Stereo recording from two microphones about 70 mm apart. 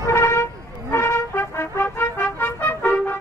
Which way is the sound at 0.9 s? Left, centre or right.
Left.